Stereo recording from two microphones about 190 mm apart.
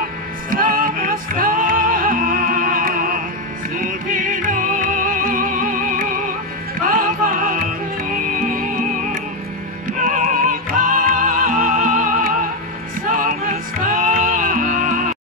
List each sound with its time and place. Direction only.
0.5 s music: 50° right (ahead or behind)